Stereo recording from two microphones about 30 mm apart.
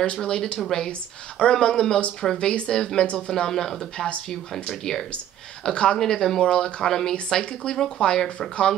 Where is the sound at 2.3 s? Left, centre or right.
Left.